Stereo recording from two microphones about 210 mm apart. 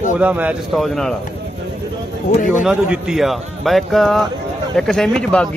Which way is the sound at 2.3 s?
35° left (ahead or behind).